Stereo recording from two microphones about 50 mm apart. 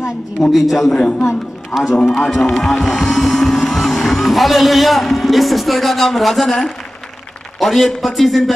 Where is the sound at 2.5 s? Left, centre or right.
Centre.